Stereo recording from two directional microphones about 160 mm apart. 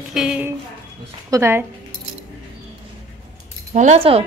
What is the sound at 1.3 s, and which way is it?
Speech, 15° right (ahead or behind).